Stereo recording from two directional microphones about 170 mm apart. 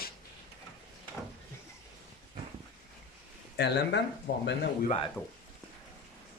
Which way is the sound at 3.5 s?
80° left.